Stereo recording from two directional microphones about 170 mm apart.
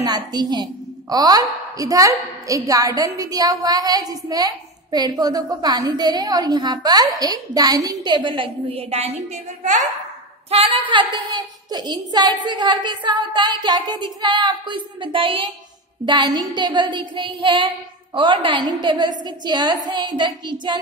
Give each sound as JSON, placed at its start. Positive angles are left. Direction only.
{"t": 0.0, "sound": "a woman's voice", "side_deg": -25}
{"t": 10.5, "sound": "a woman's voice", "side_deg": -30}